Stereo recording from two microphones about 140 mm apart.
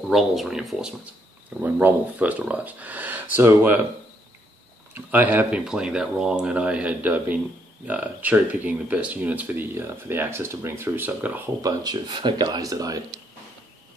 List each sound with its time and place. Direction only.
0.1 s speech: centre (ahead or behind)
4.9 s speech: 15° right (ahead or behind)
11.6 s speech: 30° right (ahead or behind)